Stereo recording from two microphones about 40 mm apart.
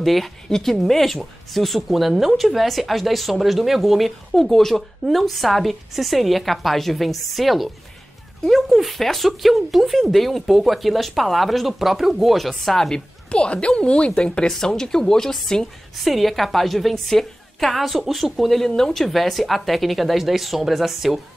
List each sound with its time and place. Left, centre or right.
0.0 s speech: centre
4.3 s speech: centre
12.9 s speech: left
16.0 s speech: centre
18.5 s speech: centre